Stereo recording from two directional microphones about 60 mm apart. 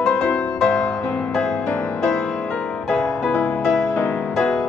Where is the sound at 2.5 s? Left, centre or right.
Centre.